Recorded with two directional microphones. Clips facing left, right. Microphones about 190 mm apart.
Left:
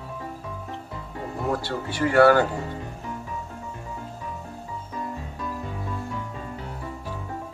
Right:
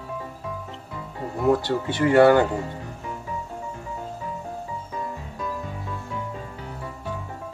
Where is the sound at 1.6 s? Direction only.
20° right (ahead or behind).